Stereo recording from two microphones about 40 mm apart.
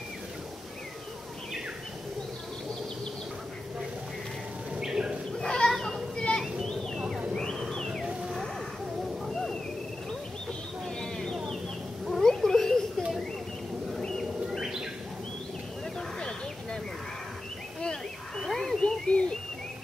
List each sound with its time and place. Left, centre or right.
4.7 s bird: centre
5.4 s cat: centre
5.7 s children playing: centre
6.1 s children playing: left
7.3 s a sound: centre
9.3 s a sound: centre
11.0 s a sound: centre
12.1 s cat: centre
12.4 s children playing: centre
14.0 s bird: centre
18.4 s a sound: centre
19.0 s bird: left